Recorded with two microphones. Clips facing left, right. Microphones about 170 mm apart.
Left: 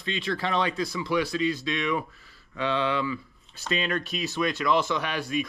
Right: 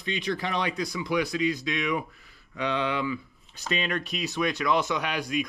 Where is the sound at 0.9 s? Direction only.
20° right (ahead or behind).